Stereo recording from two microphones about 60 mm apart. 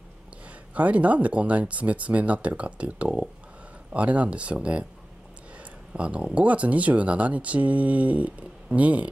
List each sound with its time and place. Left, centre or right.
0.5 s speech: right